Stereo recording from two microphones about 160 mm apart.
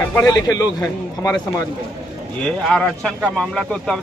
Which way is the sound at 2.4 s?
5° left (ahead or behind).